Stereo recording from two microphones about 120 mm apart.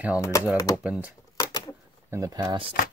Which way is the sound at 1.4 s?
35° left (ahead or behind).